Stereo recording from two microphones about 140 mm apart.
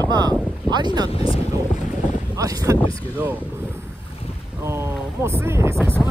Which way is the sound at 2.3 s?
25° right (ahead or behind).